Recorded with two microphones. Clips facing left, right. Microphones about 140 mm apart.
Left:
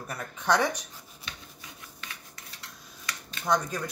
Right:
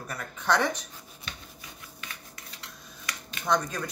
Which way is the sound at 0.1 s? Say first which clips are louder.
Left 1 dB; 15° left (ahead or behind).